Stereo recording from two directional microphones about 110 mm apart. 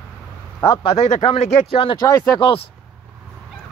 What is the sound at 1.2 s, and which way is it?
Speech, 70° left (ahead or behind).